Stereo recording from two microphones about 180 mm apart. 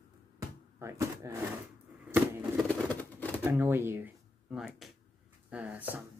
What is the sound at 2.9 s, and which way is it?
Typewriter, 10° left (ahead or behind).